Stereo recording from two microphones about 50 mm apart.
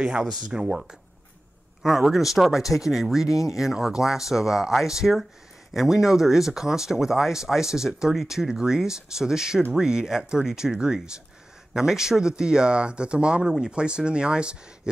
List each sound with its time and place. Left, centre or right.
0.0 s speech: centre